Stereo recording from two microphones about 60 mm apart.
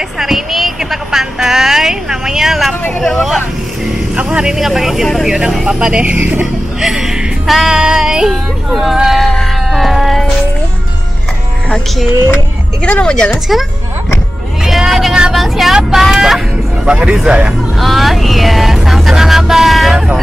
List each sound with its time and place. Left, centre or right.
0.2 s a sound: centre
4.2 s speech: centre
4.6 s speech: centre
5.3 s speech: centre; by 6.4 s right
6.4 s music: centre
8.6 s a sound: centre
12.8 s speech: left
13.1 s speech: centre
14.6 s speech: centre
16.8 s speech: centre
17.7 s vehicle: centre